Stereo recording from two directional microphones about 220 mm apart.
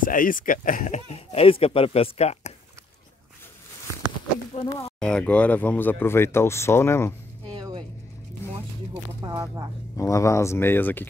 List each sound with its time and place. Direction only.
0.0 s speech: 40° left (ahead or behind)
4.6 s speech: 20° left (ahead or behind)
5.0 s speech: 5° left (ahead or behind)
7.4 s a sound: 20° right (ahead or behind)
8.9 s speech: 15° right (ahead or behind)
9.9 s speech: 15° left (ahead or behind)